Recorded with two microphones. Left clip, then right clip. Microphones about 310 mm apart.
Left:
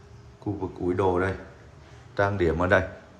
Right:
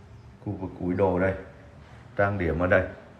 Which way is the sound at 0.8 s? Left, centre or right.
Centre.